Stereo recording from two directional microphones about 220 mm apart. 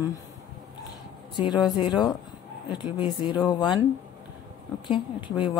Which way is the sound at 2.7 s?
20° left (ahead or behind).